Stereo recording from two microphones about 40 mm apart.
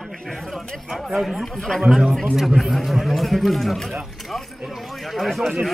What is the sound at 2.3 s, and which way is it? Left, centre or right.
Speech, centre.